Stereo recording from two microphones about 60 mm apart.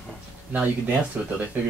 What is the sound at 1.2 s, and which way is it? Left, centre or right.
Speech, right.